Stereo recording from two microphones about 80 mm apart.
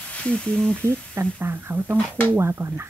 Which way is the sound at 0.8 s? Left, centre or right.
Right.